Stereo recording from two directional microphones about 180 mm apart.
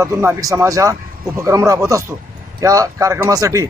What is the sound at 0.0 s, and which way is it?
Speech, 15° right (ahead or behind).